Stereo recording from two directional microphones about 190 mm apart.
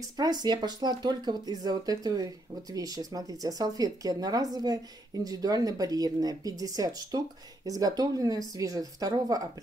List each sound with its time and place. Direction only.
0.2 s speech: 20° right (ahead or behind)